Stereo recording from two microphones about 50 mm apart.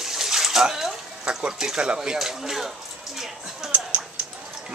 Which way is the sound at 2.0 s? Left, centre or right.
Centre.